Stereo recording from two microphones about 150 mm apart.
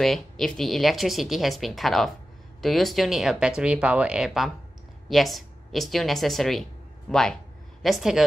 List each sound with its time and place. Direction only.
0.0 s speech: centre (ahead or behind)